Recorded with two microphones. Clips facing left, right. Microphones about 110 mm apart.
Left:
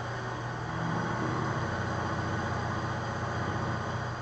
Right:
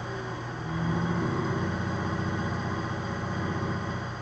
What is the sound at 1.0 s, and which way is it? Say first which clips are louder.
Vehicle: right 3 dB; 10° left (ahead or behind).